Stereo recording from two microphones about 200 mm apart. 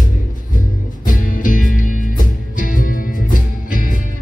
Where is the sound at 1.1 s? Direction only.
45° left (ahead or behind).